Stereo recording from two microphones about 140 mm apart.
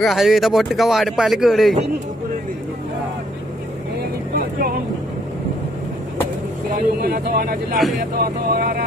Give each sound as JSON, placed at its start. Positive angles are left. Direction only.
{"t": 0.0, "sound": "speech", "side_deg": 0}
{"t": 4.4, "sound": "vehicle", "side_deg": -90}
{"t": 7.0, "sound": "speech", "side_deg": -90}